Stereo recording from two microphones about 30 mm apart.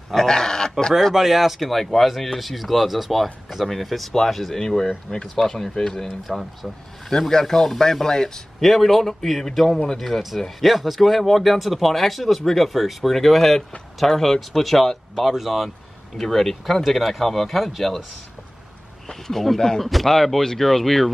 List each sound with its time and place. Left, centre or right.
0.1 s speech: centre
1.1 s speech: centre
1.6 s speech: centre
4.6 s speech: centre
6.0 s speech: centre
7.1 s speech: centre
8.5 s speech: centre
19.0 s speech: centre